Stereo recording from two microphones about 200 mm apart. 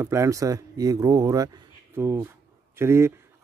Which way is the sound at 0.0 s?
15° right (ahead or behind).